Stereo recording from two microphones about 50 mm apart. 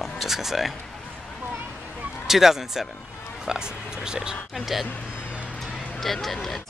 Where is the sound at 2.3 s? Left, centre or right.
Centre.